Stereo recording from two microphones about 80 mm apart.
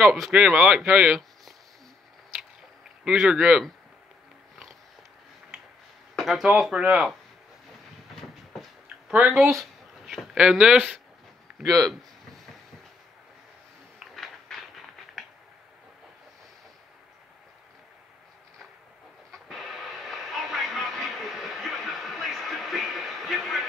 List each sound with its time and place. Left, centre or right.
0.0 s speech: centre
3.1 s speech: centre
6.1 s speech: centre
8.8 s a sound: centre
9.3 s speech: centre
11.6 s speech: centre
14.1 s a sound: centre
19.3 s music: centre